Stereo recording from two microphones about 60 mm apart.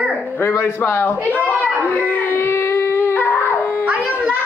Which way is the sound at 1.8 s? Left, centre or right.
Left.